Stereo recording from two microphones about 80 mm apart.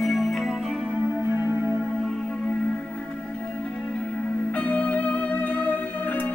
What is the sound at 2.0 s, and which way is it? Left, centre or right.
Music, centre.